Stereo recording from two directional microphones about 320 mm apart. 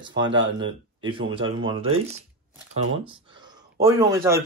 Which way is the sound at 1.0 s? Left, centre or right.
Centre.